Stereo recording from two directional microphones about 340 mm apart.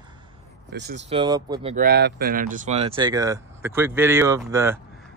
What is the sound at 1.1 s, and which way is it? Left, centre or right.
Speech, centre.